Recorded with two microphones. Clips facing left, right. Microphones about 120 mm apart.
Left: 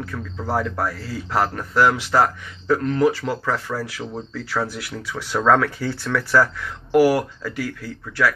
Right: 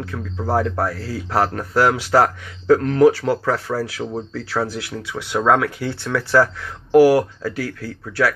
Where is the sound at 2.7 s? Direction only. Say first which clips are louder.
Right 5 dB; 65° right (ahead or behind).